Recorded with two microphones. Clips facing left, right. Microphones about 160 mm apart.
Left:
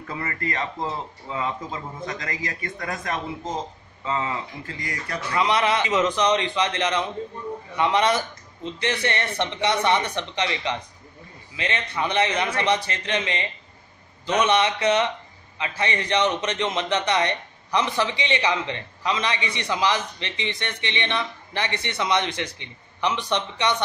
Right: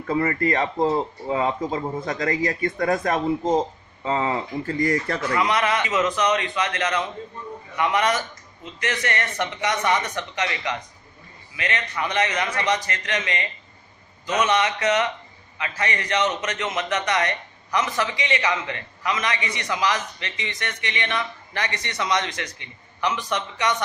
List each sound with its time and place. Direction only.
0.1 s speech: 35° right (ahead or behind)
4.0 s speech: 35° right (ahead or behind)
5.3 s a man's voice: 25° left (ahead or behind)